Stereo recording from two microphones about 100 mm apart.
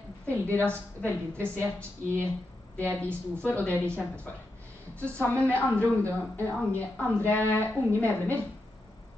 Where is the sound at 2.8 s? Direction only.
15° left (ahead or behind).